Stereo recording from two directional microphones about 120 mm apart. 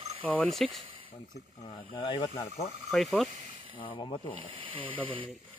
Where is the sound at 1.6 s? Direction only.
45° left (ahead or behind).